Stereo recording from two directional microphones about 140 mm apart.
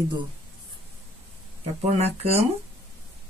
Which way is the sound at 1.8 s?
50° right (ahead or behind).